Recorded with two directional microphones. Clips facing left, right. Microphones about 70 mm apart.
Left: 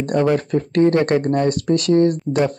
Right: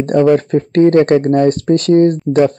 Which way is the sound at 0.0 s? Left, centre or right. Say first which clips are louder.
Right 7 dB; right.